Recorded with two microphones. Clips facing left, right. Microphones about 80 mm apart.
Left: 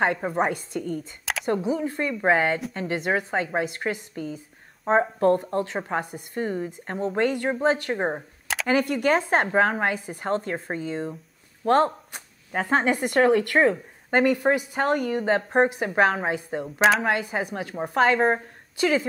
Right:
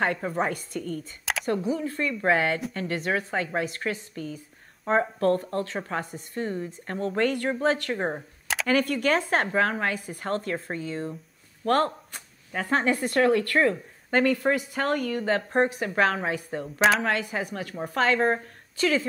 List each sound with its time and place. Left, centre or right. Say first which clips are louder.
0.0 s a woman's voice: left 3 dB; left